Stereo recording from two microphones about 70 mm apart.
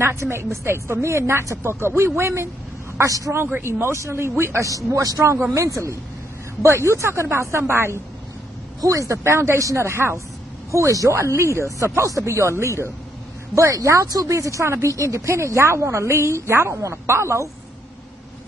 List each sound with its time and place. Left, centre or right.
0.0 s a woman's voice: right
3.6 s a woman's voice: right
4.8 s a woman's voice: right
8.8 s a woman's voice: right
10.7 s speech: right